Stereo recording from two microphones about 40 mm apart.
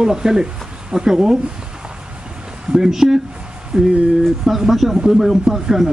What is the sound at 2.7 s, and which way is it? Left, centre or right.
Speech, centre.